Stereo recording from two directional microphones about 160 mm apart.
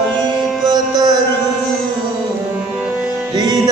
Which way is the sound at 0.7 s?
25° right (ahead or behind).